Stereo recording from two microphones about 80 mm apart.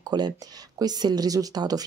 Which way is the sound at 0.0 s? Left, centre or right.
Right.